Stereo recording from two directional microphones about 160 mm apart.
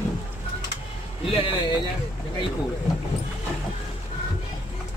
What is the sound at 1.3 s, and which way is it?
Speech, 30° left (ahead or behind).